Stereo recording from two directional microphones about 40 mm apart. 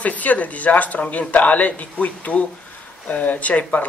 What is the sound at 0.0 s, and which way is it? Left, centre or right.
Speech, left.